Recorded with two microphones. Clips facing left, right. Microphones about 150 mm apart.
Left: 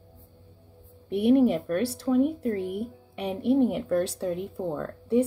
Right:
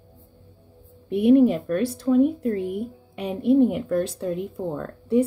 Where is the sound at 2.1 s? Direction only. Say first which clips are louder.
Right 4 dB; 5° left (ahead or behind).